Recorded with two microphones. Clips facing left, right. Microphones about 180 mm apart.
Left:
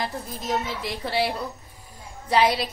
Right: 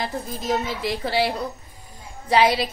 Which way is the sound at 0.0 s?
Centre (ahead or behind).